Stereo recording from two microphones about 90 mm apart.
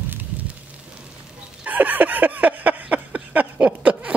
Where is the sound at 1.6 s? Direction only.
20° right (ahead or behind).